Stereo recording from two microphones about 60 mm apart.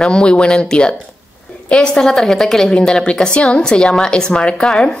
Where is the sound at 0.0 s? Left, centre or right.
Centre.